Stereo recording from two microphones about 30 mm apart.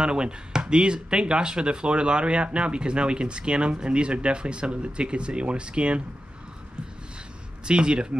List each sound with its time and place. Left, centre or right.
0.0 s speech: right
7.6 s speech: right